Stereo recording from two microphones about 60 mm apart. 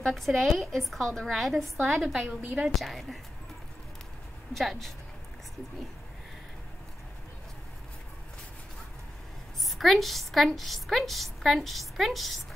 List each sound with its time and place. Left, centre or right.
0.0 s a woman's voice: centre
1.9 s a woman's voice: centre
4.6 s a woman's voice: centre
9.6 s a woman's voice: centre